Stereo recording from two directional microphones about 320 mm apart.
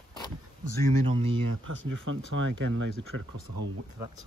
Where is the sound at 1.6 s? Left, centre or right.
Right.